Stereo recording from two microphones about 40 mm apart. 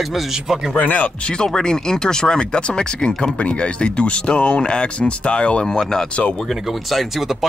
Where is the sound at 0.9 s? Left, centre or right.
Left.